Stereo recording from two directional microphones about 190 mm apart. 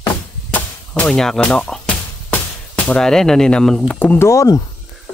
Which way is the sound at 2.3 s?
5° left (ahead or behind).